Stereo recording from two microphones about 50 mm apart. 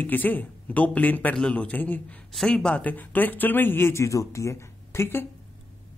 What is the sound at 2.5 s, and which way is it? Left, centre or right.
Speech, centre.